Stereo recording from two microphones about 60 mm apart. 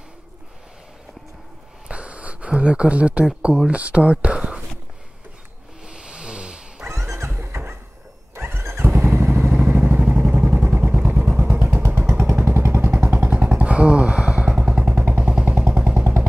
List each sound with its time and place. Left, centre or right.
1.9 s a sound: right
3.4 s speech: centre
5.9 s wild animals: centre
6.9 s a sound: right
8.4 s motorcycle: right
10.2 s vehicle: right
11.4 s vehicle: right
13.2 s a sound: right
15.2 s vehicle: right